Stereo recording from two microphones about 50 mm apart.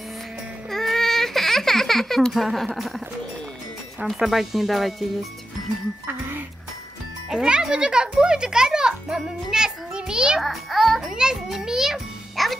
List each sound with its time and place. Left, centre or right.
0.7 s baby cry: centre
4.0 s speech: centre
6.0 s speech: right
7.2 s a child's voice: centre
10.4 s a child's voice: centre